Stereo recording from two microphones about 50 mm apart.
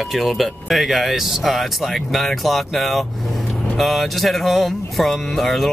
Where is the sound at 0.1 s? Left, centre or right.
Centre.